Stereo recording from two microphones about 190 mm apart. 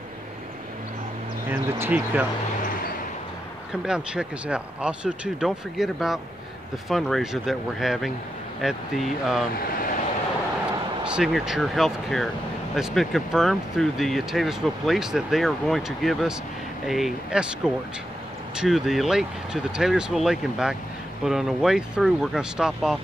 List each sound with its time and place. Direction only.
1.5 s speech: 10° right (ahead or behind)
3.8 s speech: 5° right (ahead or behind)
9.5 s speech: 50° left (ahead or behind)
11.1 s speech: 5° right (ahead or behind)